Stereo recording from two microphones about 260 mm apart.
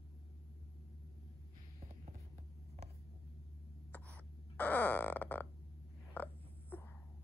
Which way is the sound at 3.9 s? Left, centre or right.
Centre.